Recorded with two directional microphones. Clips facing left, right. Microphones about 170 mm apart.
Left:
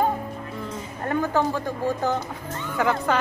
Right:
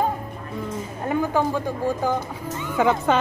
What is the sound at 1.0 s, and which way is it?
A woman's voice, 15° right (ahead or behind).